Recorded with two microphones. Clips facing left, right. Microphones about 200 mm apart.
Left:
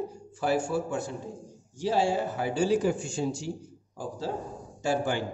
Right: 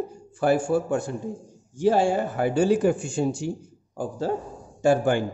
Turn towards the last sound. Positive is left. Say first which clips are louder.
# right 7 dB
turn(degrees=-55)  # may be behind; listen again after turning